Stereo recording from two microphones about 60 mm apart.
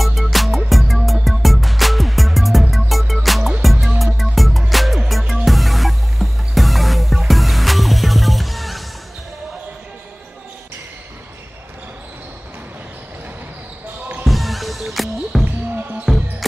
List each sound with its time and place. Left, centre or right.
0.0 s music: centre
14.2 s music: centre
15.4 s basketball bounce: right